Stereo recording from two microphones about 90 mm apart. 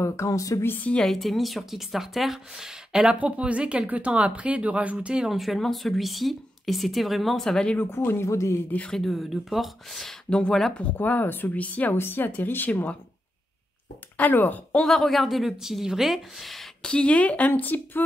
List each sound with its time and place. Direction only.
0.0 s speech: 30° left (ahead or behind)
0.7 s a woman's voice: 15° left (ahead or behind)
1.0 s speech: centre (ahead or behind)
7.7 s speech: 25° left (ahead or behind)
8.6 s a woman's voice: 15° left (ahead or behind)
8.9 s speech: centre (ahead or behind)
11.0 s speech: 20° left (ahead or behind)
14.1 s speech: 20° left (ahead or behind)
14.8 s speech: 5° left (ahead or behind); by 18.0 s 20° left (ahead or behind)